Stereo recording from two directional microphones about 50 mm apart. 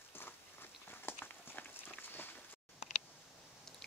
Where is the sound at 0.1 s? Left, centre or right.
Left.